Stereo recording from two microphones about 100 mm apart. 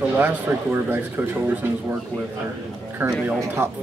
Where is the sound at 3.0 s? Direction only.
20° right (ahead or behind).